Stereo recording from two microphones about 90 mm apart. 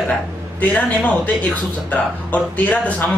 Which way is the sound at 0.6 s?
20° left (ahead or behind).